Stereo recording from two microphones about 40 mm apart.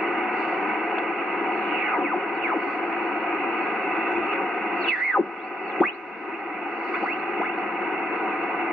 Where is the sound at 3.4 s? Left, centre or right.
Centre.